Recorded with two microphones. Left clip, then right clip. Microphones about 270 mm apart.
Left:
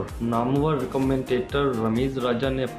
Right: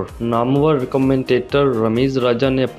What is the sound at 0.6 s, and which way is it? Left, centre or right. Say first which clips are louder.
Speech: right 8 dB; right.